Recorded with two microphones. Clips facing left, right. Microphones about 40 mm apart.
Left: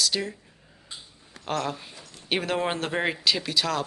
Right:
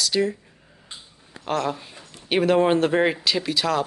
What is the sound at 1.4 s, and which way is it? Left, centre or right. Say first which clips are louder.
A woman's voice: right 4 dB; centre.